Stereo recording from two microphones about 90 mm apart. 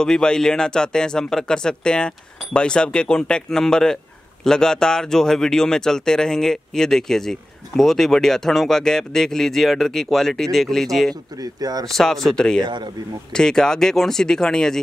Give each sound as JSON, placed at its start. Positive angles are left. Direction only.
{"t": 0.0, "sound": "speech", "side_deg": 10}
{"t": 11.4, "sound": "speech", "side_deg": -45}
{"t": 11.9, "sound": "speech", "side_deg": 5}
{"t": 12.6, "sound": "speech", "side_deg": -55}
{"t": 13.3, "sound": "speech", "side_deg": 5}